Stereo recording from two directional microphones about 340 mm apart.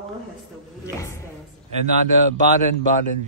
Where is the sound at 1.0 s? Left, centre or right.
Centre.